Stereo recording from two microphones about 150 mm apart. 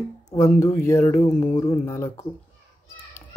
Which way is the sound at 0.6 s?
20° left (ahead or behind).